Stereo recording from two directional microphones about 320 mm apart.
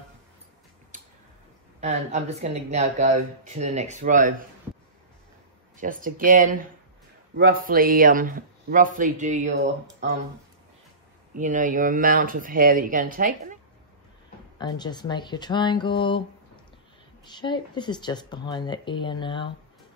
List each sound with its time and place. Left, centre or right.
1.8 s speech: right
5.8 s speech: right
11.3 s speech: right
14.6 s speech: centre
17.2 s speech: centre